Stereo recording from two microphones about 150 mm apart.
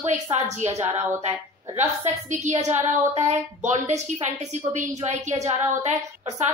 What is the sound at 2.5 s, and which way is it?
A woman's voice, 50° right (ahead or behind).